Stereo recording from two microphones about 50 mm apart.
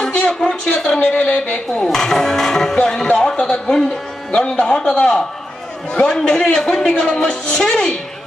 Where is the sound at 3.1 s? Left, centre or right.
Left.